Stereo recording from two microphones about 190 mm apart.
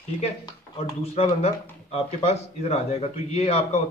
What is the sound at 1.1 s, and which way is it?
Speech, 35° left (ahead or behind).